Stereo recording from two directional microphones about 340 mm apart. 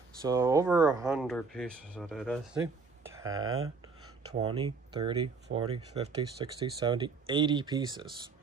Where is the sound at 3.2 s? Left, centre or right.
Right.